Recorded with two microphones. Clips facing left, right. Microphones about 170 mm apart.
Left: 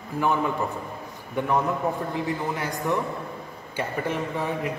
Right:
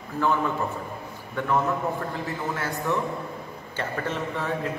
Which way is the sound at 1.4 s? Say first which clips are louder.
Left 1 dB; 15° left (ahead or behind).